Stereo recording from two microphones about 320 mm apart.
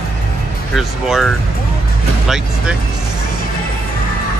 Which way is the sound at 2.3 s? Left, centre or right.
Centre.